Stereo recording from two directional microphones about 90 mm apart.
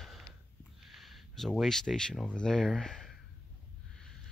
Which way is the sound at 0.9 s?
Centre (ahead or behind).